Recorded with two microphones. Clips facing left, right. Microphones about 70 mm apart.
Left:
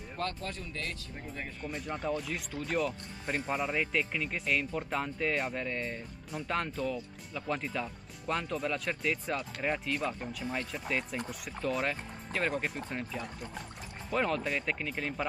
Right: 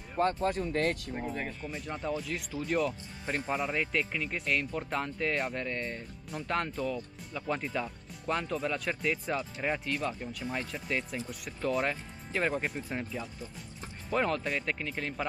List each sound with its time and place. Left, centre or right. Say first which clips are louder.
0.2 s speech: right 8 dB; right
0.5 s speech: right 10 dB; right
1.1 s speech: right 7 dB; right
1.4 s speech: right 1 dB; centre